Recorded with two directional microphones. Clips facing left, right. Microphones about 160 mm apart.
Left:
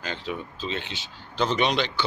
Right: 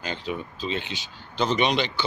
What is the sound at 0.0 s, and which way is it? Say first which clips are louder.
Speech: right 1 dB; 5° right (ahead or behind).